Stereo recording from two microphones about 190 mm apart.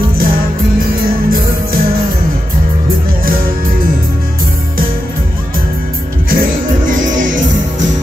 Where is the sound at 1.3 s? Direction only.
50° right (ahead or behind).